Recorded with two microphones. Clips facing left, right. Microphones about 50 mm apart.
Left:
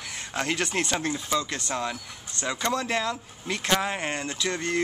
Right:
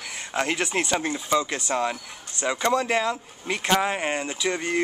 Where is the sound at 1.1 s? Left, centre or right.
Centre.